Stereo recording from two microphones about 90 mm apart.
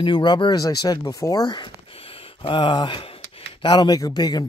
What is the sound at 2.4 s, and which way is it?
Speech, 60° left (ahead or behind).